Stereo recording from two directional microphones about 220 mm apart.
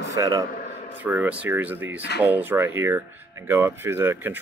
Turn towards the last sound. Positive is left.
turn(degrees=-10)  # may be behind; listen again after turning